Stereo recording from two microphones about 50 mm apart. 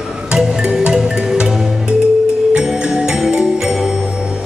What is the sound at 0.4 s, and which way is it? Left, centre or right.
Music, centre.